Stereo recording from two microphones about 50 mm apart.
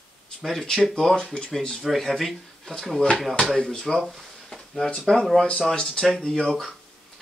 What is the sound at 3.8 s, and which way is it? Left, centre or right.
Speech, centre.